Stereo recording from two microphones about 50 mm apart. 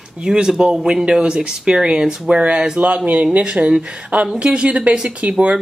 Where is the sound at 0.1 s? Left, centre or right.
Centre.